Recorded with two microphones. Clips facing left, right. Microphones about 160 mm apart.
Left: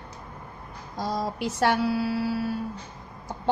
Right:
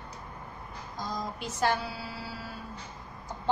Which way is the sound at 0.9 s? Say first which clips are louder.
Left 7 dB; 70° left (ahead or behind).